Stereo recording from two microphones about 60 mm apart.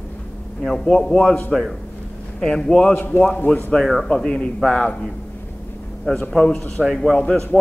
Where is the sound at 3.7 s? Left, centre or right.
Centre.